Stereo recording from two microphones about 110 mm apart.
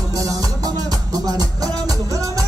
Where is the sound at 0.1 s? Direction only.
30° right (ahead or behind).